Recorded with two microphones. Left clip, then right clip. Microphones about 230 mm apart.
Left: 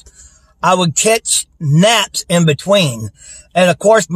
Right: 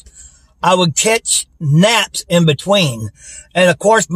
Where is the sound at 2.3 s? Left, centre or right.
Centre.